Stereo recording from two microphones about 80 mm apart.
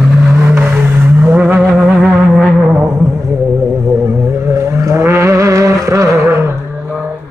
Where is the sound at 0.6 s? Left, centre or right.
Right.